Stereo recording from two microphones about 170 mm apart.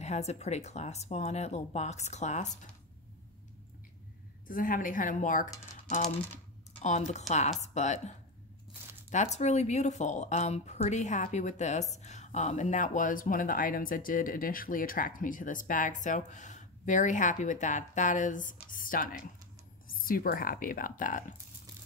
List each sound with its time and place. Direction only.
0.0 s speech: 40° left (ahead or behind)
4.5 s speech: 55° left (ahead or behind)
6.8 s speech: 45° left (ahead or behind)
9.1 s speech: 40° left (ahead or behind)